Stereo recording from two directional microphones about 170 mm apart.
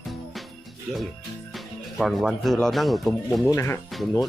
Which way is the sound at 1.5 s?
Centre (ahead or behind).